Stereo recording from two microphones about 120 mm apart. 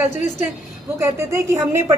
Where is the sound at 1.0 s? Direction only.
25° right (ahead or behind).